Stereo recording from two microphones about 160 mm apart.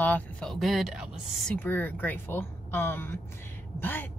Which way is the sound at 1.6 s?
10° left (ahead or behind).